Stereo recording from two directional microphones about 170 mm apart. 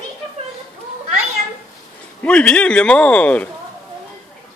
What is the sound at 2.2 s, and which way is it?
A man's voice, 5° left (ahead or behind).